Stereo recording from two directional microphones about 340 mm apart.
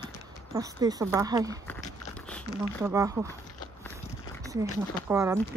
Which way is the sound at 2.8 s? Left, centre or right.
Centre.